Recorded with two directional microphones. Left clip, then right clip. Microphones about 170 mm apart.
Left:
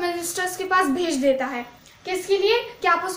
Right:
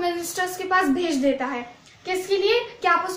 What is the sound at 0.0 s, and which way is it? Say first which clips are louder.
A woman's voice: even; 25° left (ahead or behind).